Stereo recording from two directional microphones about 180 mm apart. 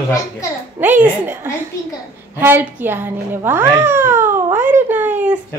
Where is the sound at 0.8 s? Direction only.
10° right (ahead or behind).